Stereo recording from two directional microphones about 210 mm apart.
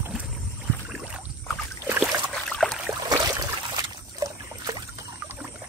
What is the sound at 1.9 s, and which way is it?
Boat, 5° right (ahead or behind).